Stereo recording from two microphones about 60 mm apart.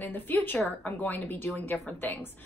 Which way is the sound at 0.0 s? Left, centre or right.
Left.